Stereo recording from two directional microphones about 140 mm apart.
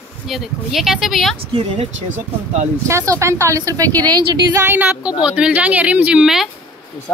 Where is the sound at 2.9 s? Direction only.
20° right (ahead or behind).